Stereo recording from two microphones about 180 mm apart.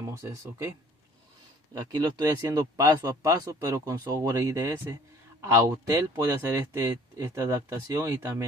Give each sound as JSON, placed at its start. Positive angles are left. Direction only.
{"t": 0.0, "sound": "speech", "side_deg": -15}